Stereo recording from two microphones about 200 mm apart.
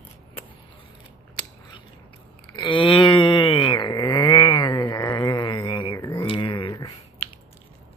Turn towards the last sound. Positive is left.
turn(degrees=25)  # may be behind; listen again after turning